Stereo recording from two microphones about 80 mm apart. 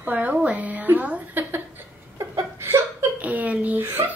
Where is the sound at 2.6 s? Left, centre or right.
Right.